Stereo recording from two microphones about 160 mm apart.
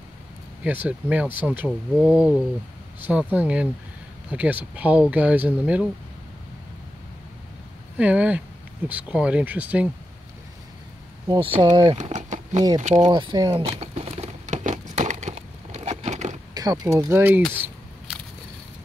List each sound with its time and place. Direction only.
0.7 s speech: 10° right (ahead or behind)
8.0 s speech: 10° right (ahead or behind)
11.2 s speech: 35° right (ahead or behind)
12.0 s a sound: 50° right (ahead or behind)
12.5 s speech: 25° right (ahead or behind)
12.8 s speech: 45° right (ahead or behind)
13.1 s a sound: 30° right (ahead or behind); by 16.3 s 45° right (ahead or behind)
16.5 s speech: 25° right (ahead or behind)